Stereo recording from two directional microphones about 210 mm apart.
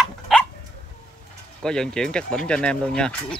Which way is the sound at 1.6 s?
5° left (ahead or behind).